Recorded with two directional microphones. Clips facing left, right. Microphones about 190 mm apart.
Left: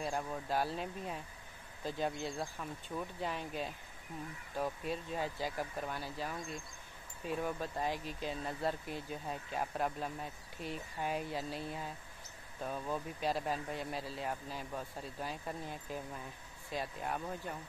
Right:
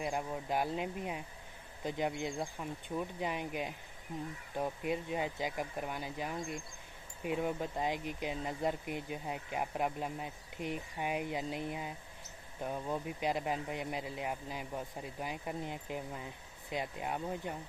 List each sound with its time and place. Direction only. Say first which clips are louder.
0.0 s speech: right 1 dB; 15° right (ahead or behind)